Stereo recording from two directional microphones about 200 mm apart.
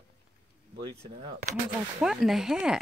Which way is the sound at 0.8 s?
25° right (ahead or behind).